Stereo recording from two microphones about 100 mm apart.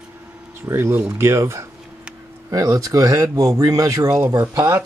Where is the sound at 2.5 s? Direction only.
40° right (ahead or behind).